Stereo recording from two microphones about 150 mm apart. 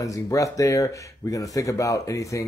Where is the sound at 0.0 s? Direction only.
20° left (ahead or behind).